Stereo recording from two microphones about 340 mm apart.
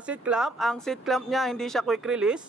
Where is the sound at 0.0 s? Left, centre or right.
Centre.